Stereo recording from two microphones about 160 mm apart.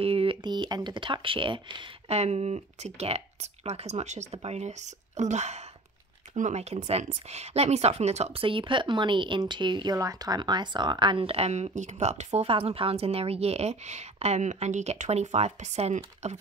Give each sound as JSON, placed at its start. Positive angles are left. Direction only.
{"t": 0.0, "sound": "speech", "side_deg": -35}